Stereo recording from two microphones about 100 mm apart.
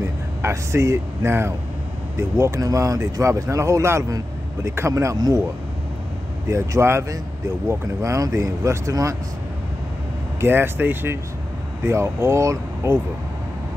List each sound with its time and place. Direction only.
0.0 s speech: 30° right (ahead or behind)
6.4 s speech: 30° right (ahead or behind)
10.4 s speech: 20° right (ahead or behind)